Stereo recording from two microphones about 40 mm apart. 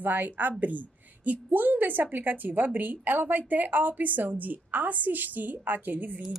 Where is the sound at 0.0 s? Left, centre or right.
Right.